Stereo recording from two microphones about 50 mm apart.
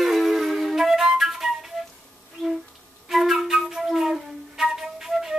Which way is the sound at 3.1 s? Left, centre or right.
Centre.